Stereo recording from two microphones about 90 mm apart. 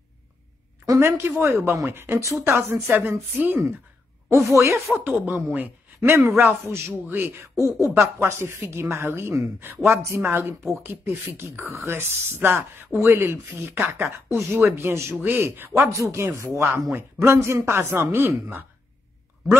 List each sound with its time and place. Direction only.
0.8 s speech: 35° right (ahead or behind)
4.3 s speech: 35° right (ahead or behind)
4.9 s a man's voice: 20° right (ahead or behind)